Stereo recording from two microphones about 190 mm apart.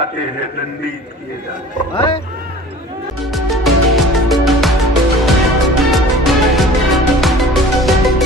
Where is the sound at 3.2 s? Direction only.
Centre (ahead or behind).